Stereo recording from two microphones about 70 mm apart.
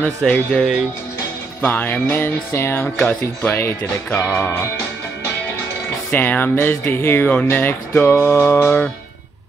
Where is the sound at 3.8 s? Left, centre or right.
Left.